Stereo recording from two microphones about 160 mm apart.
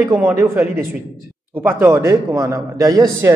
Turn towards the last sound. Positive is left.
turn(degrees=-20)  # may be behind; listen again after turning